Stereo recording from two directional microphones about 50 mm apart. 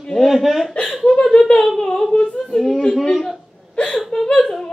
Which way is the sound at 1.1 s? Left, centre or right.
Centre.